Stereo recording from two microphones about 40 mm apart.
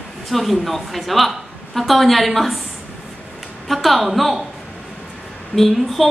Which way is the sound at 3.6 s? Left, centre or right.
Centre.